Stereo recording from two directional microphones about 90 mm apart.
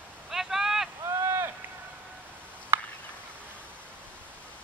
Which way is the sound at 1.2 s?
30° right (ahead or behind).